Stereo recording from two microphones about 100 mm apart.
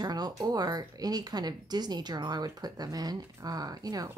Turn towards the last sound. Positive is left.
turn(degrees=-40)  # may be behind; listen again after turning